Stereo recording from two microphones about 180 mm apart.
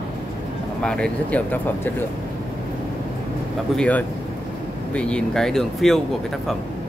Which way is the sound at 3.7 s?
5° left (ahead or behind).